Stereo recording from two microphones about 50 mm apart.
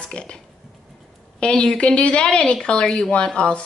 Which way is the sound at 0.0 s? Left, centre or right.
Centre.